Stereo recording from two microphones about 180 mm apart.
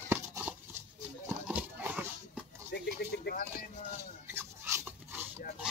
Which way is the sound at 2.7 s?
65° left (ahead or behind).